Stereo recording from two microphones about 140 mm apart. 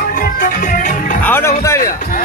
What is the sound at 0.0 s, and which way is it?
Music, 85° left.